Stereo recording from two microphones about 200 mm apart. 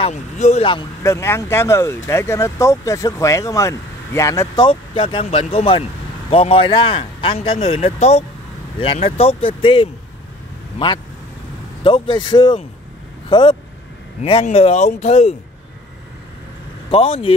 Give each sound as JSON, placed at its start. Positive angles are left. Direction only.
{"t": 0.0, "sound": "a man's voice", "side_deg": 35}
{"t": 1.0, "sound": "speech", "side_deg": 15}
{"t": 4.6, "sound": "a man's voice", "side_deg": 25}
{"t": 16.9, "sound": "a man's voice", "side_deg": 30}